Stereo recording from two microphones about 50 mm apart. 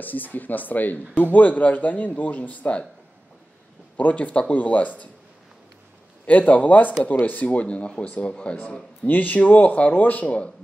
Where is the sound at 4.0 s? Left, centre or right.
Left.